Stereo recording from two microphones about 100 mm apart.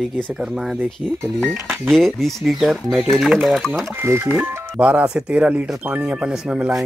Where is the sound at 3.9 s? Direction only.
25° right (ahead or behind).